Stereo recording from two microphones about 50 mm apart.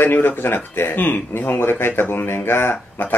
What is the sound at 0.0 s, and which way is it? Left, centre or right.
Speech, left.